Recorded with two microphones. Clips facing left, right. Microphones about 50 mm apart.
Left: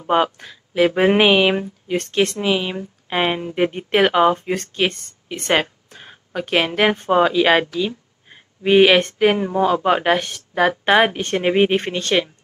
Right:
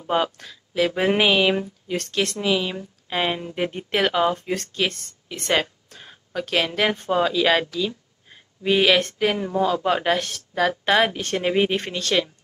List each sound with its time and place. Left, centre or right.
0.0 s speech: left